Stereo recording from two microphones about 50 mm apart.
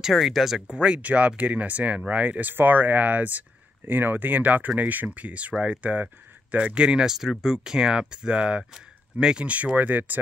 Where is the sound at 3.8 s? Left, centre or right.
Right; by 9.5 s centre.